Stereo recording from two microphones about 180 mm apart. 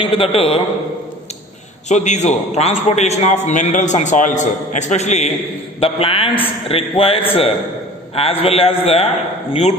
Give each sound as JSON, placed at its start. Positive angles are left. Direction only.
{"t": 0.0, "sound": "a man's voice", "side_deg": 30}
{"t": 1.9, "sound": "a man's voice", "side_deg": 40}